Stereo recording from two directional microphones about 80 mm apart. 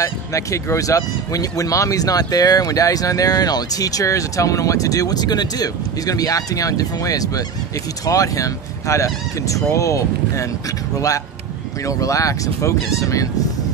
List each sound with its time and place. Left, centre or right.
0.0 s speech: left
11.8 s speech: left